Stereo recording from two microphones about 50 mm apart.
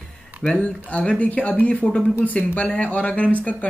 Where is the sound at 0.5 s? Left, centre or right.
Left.